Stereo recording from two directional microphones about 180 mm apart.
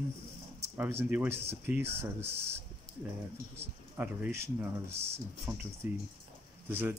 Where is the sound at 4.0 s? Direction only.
10° right (ahead or behind).